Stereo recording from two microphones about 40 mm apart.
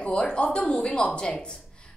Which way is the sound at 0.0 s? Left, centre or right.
Left.